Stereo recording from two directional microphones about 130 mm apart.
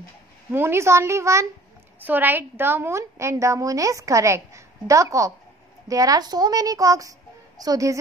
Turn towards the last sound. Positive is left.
turn(degrees=-25)  # may be behind; listen again after turning